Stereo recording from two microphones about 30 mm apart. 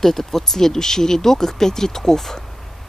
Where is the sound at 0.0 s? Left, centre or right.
Centre.